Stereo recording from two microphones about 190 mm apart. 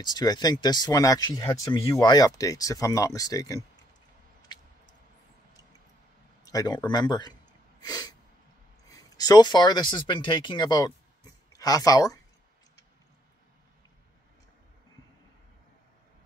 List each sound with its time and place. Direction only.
0.0 s speech: 20° left (ahead or behind)
6.4 s speech: 20° left (ahead or behind)
7.8 s a sound: 20° left (ahead or behind)
8.8 s speech: 20° left (ahead or behind)